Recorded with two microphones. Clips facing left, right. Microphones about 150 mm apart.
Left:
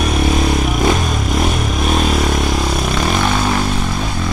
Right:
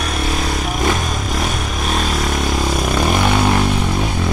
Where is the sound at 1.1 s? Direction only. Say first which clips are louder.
Left 4 dB; 5° left (ahead or behind).